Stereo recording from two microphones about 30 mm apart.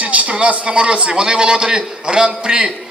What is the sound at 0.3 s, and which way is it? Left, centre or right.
A man's voice, right.